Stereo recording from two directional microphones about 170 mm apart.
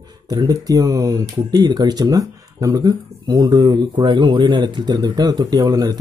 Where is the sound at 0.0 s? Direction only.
20° right (ahead or behind).